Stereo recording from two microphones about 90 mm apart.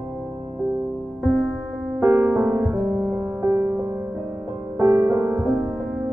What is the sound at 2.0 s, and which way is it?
Music, 30° right (ahead or behind).